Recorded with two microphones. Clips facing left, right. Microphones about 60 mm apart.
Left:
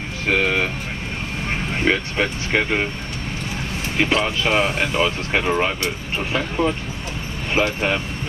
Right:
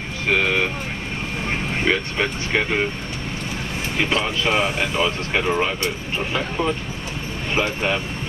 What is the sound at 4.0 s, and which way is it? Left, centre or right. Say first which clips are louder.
Speech: left 2 dB; centre.